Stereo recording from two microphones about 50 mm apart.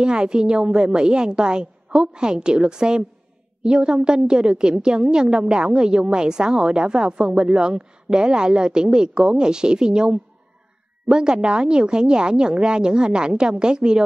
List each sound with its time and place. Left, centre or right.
0.0 s a woman's voice: centre